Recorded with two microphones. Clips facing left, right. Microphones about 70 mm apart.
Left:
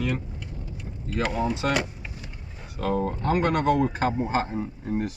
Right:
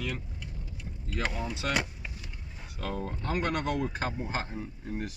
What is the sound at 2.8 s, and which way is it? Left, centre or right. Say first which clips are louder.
Speech: left 10 dB; left.